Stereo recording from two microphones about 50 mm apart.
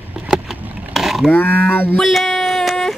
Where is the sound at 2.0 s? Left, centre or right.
Centre.